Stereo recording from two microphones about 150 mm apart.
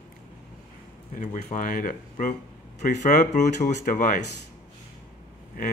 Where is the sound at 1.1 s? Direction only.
60° left (ahead or behind).